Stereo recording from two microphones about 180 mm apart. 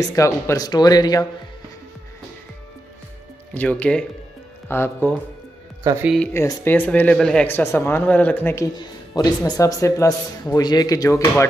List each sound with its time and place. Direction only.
0.1 s a man's voice: 15° left (ahead or behind)
3.5 s speech: 5° left (ahead or behind)
8.7 s a man's voice: 20° left (ahead or behind)